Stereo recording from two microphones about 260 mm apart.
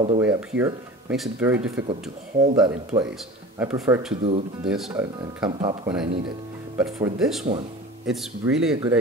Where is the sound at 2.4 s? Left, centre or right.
Centre.